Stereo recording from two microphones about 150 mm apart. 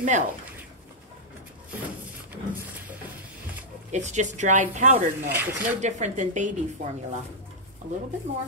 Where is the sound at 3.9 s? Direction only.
50° right (ahead or behind).